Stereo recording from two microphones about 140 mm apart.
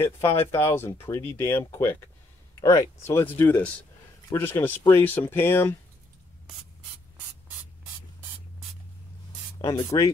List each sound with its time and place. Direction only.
0.0 s speech: 15° left (ahead or behind)
9.7 s speech: 25° left (ahead or behind)